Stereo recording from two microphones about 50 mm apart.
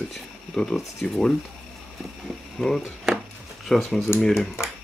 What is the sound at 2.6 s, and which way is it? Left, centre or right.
Speech, centre.